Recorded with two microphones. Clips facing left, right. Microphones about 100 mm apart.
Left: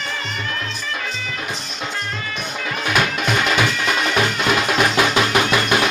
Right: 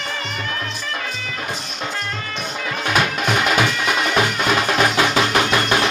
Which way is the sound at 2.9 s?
5° right (ahead or behind).